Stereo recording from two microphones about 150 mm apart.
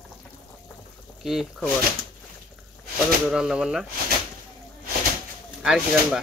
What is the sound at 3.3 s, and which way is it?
Speech, 5° right (ahead or behind).